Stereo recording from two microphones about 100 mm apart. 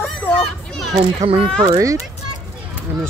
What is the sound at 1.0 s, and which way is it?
Speech, 70° right (ahead or behind).